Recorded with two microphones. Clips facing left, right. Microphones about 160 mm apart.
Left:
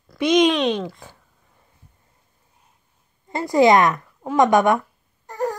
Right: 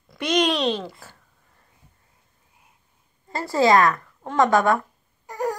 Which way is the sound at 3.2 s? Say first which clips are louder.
Left 4 dB; 20° left (ahead or behind).